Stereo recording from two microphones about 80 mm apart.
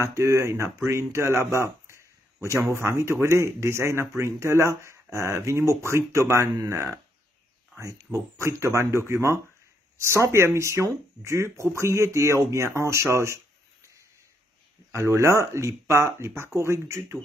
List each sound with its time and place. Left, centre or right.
0.0 s speech: right
14.9 s speech: right